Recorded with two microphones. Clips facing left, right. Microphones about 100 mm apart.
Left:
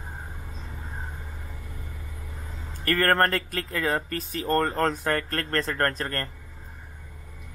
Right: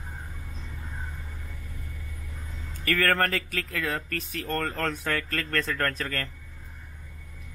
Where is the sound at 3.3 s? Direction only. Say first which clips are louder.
Left 2 dB; centre (ahead or behind).